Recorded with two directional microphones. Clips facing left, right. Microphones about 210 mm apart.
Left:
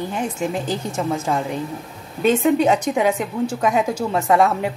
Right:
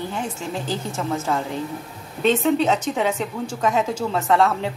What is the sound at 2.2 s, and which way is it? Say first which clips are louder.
A woman's voice: left 2 dB; 10° left (ahead or behind).